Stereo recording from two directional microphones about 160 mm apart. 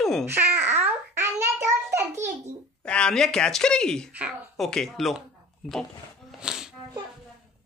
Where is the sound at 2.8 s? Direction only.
5° left (ahead or behind).